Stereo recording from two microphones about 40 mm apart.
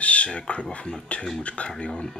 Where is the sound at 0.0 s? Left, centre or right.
Left.